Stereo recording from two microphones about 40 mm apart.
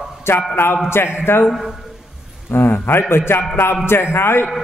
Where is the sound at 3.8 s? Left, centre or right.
Left.